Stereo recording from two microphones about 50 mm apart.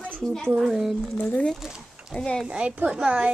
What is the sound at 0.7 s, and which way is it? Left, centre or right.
Speech, centre.